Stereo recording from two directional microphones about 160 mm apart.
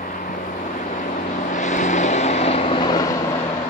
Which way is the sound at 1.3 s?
50° left (ahead or behind).